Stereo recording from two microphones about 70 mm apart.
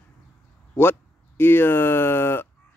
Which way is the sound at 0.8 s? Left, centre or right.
Left.